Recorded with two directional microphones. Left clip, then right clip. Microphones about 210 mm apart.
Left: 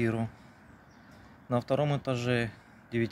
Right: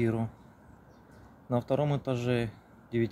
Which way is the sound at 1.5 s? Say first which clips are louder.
Even; 5° right (ahead or behind).